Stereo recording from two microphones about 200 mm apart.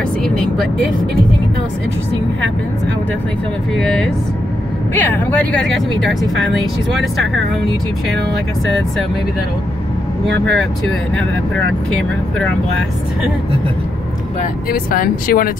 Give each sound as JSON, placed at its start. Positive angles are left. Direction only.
{"t": 0.2, "sound": "speech", "side_deg": 5}
{"t": 3.7, "sound": "speech", "side_deg": 0}
{"t": 10.2, "sound": "speech", "side_deg": -65}
{"t": 14.7, "sound": "speech", "side_deg": 45}